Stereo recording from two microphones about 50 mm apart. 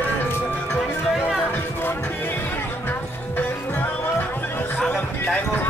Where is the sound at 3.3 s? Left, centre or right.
Left.